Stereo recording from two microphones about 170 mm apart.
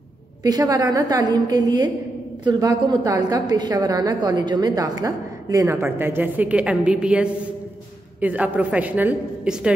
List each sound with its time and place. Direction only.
0.4 s a woman's voice: 20° right (ahead or behind)
2.9 s a woman's voice: 20° right (ahead or behind); by 9.7 s 5° right (ahead or behind)